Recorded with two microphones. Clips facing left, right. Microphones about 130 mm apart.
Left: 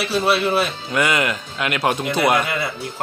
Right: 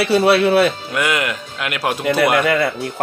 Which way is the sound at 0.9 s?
Centre (ahead or behind).